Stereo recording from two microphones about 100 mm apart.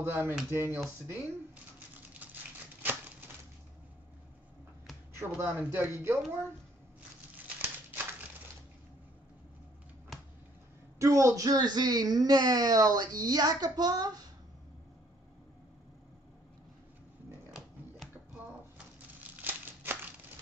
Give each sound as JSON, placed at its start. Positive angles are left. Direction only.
{"t": 0.0, "sound": "speech", "side_deg": -20}
{"t": 5.4, "sound": "speech", "side_deg": -20}
{"t": 11.0, "sound": "speech", "side_deg": -30}
{"t": 19.3, "sound": "a sound", "side_deg": -20}